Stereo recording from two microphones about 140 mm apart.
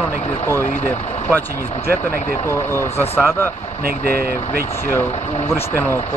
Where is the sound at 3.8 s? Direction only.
90° right.